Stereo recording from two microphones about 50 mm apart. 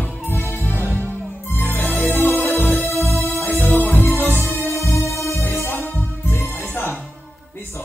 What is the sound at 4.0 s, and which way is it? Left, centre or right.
Music, left.